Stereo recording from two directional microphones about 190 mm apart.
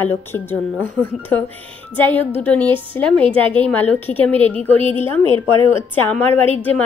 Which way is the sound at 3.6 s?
10° left (ahead or behind).